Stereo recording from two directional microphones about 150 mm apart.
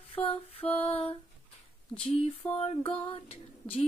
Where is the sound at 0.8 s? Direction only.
40° left (ahead or behind).